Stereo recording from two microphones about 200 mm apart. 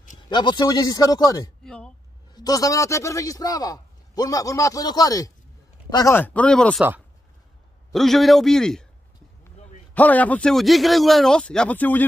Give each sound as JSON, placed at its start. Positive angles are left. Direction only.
{"t": 0.3, "sound": "speech", "side_deg": 20}
{"t": 1.6, "sound": "speech", "side_deg": 5}
{"t": 2.3, "sound": "a man's voice", "side_deg": 20}
{"t": 7.9, "sound": "a man's voice", "side_deg": 0}
{"t": 9.9, "sound": "a man's voice", "side_deg": 10}